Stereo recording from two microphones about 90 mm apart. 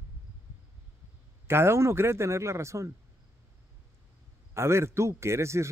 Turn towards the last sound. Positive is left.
turn(degrees=-30)  # may be behind; listen again after turning